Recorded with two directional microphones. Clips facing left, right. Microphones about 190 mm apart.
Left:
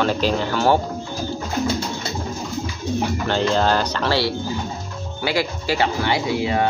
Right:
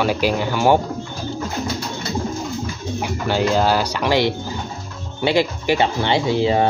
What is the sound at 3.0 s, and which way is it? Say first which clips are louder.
Speech: right 2 dB; 10° right (ahead or behind).